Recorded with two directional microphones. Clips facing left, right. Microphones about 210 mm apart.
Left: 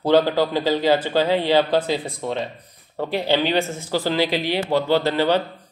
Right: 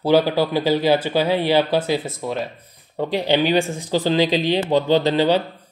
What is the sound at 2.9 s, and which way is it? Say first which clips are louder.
Speech: right 2 dB; 15° right (ahead or behind).